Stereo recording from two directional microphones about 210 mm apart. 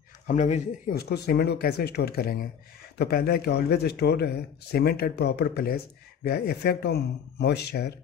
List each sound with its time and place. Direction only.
0.3 s speech: 35° left (ahead or behind)
0.9 s speech: 50° left (ahead or behind)